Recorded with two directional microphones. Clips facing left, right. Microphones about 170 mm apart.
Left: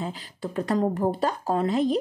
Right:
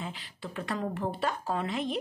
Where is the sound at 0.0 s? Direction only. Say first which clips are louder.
Left 7 dB; 40° left (ahead or behind).